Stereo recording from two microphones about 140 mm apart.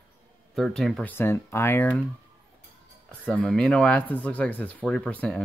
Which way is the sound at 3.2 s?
5° left (ahead or behind).